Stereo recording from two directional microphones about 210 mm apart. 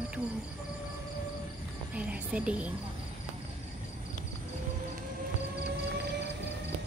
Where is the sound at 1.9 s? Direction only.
5° right (ahead or behind).